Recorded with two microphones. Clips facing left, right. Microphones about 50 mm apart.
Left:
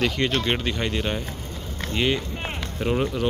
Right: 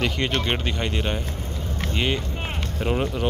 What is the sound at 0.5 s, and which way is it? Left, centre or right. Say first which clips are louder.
Speech: left 1 dB; centre.